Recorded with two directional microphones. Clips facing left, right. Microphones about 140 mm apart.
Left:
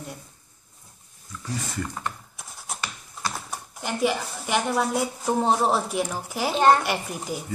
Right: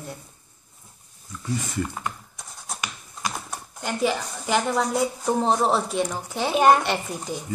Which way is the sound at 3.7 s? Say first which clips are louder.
Even; 5° left (ahead or behind).